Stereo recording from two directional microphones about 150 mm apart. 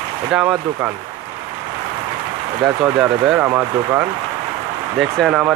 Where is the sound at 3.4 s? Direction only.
20° right (ahead or behind).